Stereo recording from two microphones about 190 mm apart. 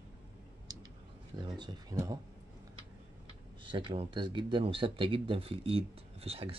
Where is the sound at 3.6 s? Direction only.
25° right (ahead or behind).